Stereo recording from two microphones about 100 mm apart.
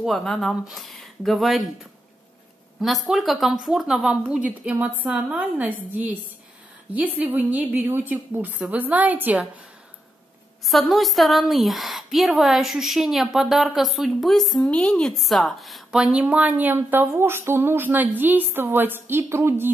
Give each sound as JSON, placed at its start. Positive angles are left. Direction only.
{"t": 0.0, "sound": "a woman's voice", "side_deg": 0}
{"t": 2.8, "sound": "a woman's voice", "side_deg": 0}
{"t": 10.6, "sound": "a woman's voice", "side_deg": 0}